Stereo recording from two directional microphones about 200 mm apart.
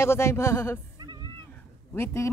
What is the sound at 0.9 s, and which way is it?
Cat, 20° right (ahead or behind).